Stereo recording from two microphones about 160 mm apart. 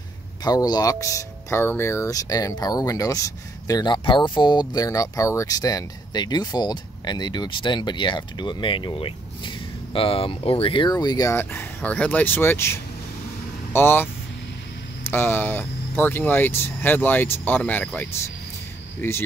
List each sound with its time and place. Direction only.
0.4 s speech: 25° left (ahead or behind)
15.0 s speech: 15° left (ahead or behind)